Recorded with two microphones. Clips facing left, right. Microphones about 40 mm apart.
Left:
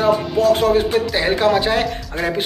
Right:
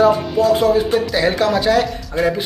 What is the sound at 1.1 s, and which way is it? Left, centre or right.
Speech, left.